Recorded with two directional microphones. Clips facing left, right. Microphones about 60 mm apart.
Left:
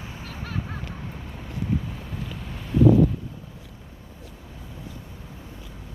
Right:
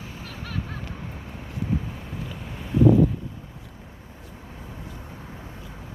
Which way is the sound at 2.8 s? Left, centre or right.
Centre.